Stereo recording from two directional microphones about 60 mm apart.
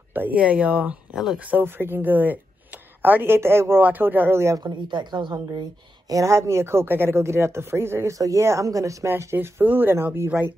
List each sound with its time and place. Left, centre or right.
0.1 s speech: right
1.1 s speech: centre
1.4 s speech: right
3.3 s speech: right
3.8 s speech: right
4.6 s speech: right
6.0 s speech: right
8.1 s speech: right
9.2 s speech: right
9.6 s speech: right